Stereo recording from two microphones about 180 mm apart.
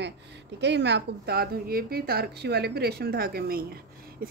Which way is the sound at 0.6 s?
75° right (ahead or behind).